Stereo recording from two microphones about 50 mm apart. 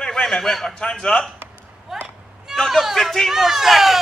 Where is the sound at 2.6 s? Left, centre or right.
Centre.